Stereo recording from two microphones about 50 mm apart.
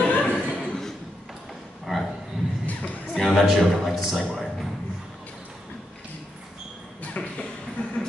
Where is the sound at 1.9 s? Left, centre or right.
Centre.